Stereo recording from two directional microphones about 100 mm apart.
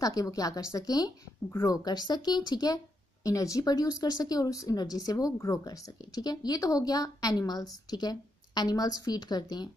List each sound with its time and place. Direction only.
0.0 s speech: 35° left (ahead or behind)